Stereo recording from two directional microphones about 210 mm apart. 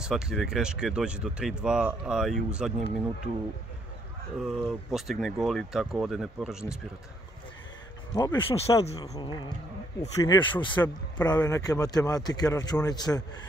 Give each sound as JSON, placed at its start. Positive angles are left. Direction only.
{"t": 0.0, "sound": "speech", "side_deg": -5}
{"t": 4.4, "sound": "speech", "side_deg": -5}
{"t": 8.1, "sound": "speech", "side_deg": 10}
{"t": 8.4, "sound": "speech", "side_deg": 25}
{"t": 8.9, "sound": "a man's voice", "side_deg": 15}